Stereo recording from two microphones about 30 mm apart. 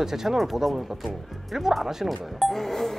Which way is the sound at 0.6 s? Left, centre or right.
Centre.